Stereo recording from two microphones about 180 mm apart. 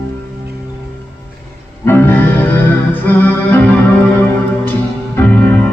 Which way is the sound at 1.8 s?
10° left (ahead or behind).